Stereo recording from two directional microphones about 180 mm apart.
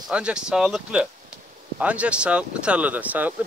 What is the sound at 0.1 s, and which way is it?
Speech, 5° right (ahead or behind).